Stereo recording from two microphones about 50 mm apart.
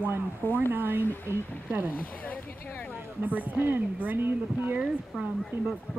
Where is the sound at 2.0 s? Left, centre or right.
Left.